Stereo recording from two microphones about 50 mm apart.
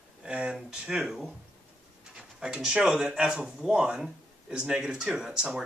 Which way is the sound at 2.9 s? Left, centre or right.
Centre.